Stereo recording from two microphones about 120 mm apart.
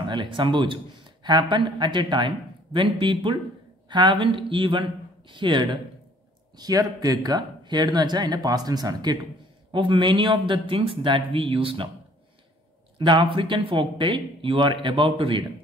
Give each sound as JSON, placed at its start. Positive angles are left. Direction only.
{"t": 0.0, "sound": "speech", "side_deg": -40}
{"t": 13.0, "sound": "speech", "side_deg": -45}